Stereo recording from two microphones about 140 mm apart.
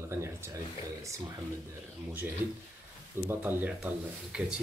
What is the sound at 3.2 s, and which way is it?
A man's voice, 10° right (ahead or behind).